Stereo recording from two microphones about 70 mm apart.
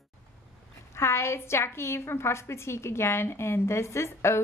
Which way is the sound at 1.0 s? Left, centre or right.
Left.